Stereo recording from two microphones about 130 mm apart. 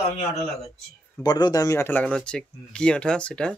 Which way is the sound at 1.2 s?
35° left (ahead or behind).